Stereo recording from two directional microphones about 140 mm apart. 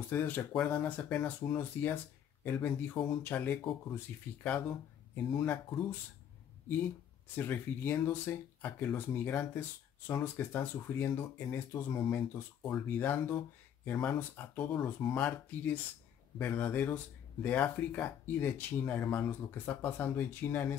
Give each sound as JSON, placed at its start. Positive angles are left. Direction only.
{"t": 0.1, "sound": "speech", "side_deg": 15}
{"t": 7.3, "sound": "speech", "side_deg": 15}